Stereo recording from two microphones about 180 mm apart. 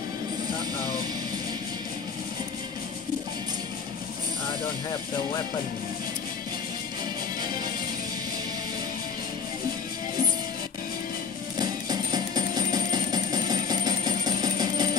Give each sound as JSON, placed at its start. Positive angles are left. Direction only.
{"t": 11.5, "sound": "music", "side_deg": -20}